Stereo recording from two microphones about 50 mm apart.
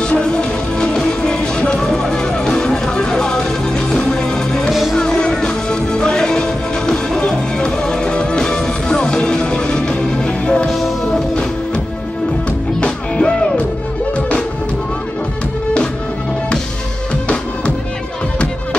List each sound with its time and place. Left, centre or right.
0.0 s music: centre
12.4 s music: centre
17.1 s music: left